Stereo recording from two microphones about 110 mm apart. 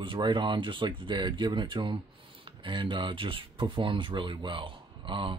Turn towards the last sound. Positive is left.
turn(degrees=-50)  # may be behind; listen again after turning